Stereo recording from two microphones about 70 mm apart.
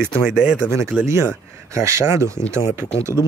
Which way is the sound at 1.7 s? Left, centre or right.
Right.